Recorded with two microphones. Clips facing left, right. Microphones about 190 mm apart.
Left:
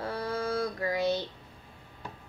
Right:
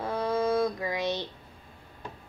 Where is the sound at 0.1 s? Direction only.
90° right.